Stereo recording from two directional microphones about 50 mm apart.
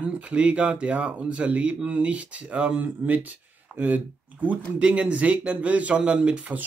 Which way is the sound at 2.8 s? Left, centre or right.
Right.